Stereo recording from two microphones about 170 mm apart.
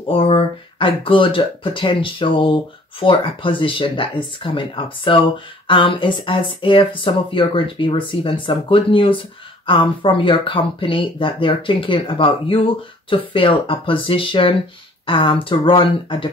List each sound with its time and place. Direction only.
0.0 s speech: 30° left (ahead or behind)